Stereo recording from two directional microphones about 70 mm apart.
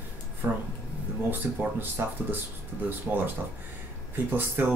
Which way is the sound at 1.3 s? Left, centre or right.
Right.